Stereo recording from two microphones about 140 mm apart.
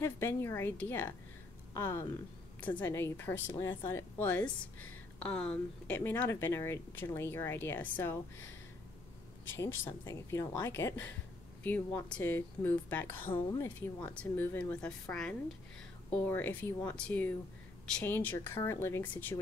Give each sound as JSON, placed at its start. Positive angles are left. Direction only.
{"t": 0.0, "sound": "a woman's voice", "side_deg": 20}
{"t": 9.6, "sound": "speech", "side_deg": 20}